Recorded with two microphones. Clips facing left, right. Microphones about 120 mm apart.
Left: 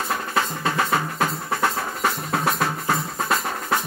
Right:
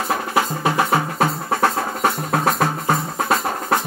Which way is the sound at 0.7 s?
25° right (ahead or behind).